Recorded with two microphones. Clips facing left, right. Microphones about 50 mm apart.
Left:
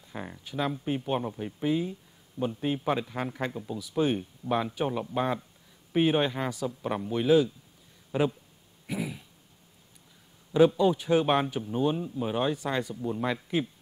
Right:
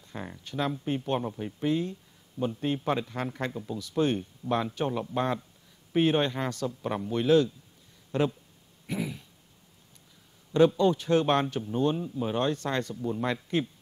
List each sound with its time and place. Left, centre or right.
0.0 s speech: centre
8.8 s throat clearing: centre
10.5 s speech: centre